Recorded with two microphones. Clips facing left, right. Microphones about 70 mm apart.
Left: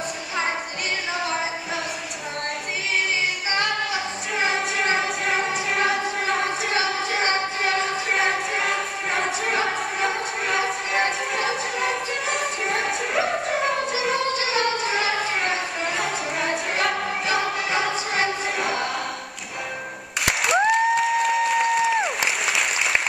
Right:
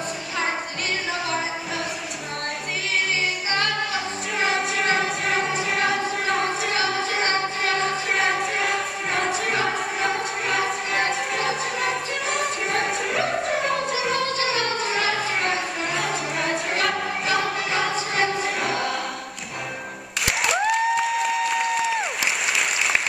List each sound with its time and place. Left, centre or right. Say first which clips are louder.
4.4 s music: even; centre
7.2 s music: even; left
8.1 s music: left 1 dB; centre
14.5 s music: left 1 dB; centre
15.1 s music: even; centre
17.7 s choir: right 1 dB; centre
18.6 s choir: even; centre
20.2 s crowd: left 2 dB; centre